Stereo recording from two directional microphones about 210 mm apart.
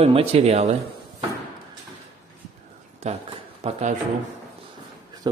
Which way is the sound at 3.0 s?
30° right (ahead or behind).